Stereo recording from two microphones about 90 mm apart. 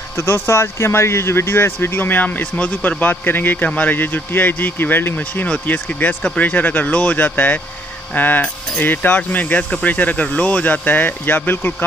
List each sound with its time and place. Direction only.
0.2 s speech: 30° left (ahead or behind)